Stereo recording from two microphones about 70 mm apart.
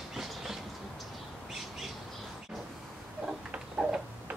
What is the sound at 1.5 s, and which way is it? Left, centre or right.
Bird, centre.